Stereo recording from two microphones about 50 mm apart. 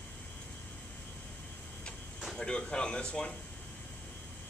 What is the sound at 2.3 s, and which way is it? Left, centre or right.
Speech, centre.